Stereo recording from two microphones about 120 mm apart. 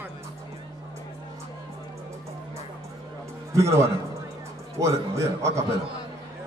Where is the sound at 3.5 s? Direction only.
25° right (ahead or behind).